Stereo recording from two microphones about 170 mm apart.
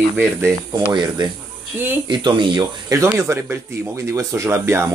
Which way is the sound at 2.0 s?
25° right (ahead or behind).